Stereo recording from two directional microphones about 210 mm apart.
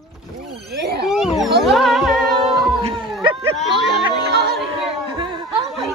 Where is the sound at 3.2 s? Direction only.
25° right (ahead or behind).